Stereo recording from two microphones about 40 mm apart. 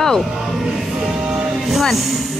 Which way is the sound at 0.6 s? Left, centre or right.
Centre.